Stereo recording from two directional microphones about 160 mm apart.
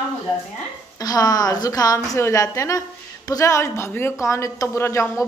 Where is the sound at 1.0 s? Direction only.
25° left (ahead or behind).